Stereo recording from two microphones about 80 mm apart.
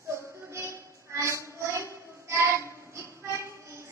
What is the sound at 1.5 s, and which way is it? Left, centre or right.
Child singing, right.